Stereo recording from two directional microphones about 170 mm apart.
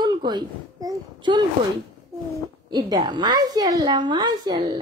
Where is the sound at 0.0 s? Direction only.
25° right (ahead or behind).